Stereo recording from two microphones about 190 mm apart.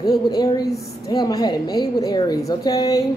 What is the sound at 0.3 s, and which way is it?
A woman's voice, 20° left (ahead or behind).